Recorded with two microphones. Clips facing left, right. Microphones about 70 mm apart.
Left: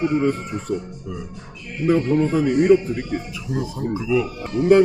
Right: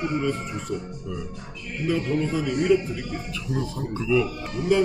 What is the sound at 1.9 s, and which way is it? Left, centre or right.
Speech, left.